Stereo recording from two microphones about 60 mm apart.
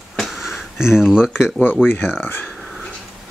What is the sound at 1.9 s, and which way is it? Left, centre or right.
Speech, left.